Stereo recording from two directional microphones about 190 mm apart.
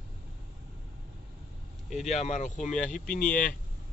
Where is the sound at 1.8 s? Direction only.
Centre (ahead or behind).